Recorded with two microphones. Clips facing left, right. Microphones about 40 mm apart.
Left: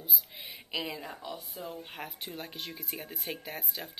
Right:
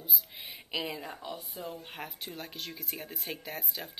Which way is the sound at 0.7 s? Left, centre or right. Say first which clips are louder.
Right 1 dB; centre.